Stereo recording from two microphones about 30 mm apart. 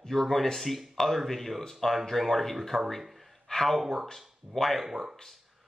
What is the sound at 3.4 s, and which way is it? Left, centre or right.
Speech, centre.